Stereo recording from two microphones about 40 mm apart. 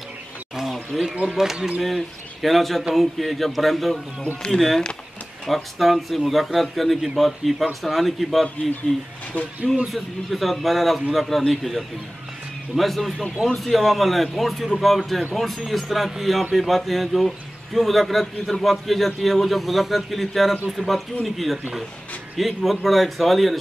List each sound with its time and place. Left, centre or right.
0.9 s speech: centre
1.3 s speech: centre
2.4 s speech: centre
8.9 s speech: left
9.9 s speech: centre